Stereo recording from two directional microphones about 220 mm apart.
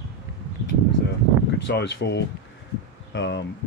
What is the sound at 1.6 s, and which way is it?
Speech, 50° left (ahead or behind).